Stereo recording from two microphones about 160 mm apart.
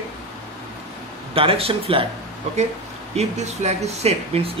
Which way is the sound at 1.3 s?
35° right (ahead or behind).